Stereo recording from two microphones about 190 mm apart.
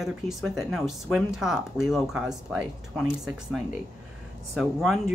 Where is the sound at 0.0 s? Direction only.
Centre (ahead or behind).